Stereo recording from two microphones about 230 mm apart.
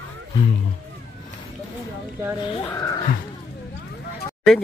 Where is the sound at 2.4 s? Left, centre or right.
Left.